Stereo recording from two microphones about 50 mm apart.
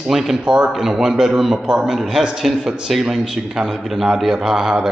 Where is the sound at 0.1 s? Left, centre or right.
Centre.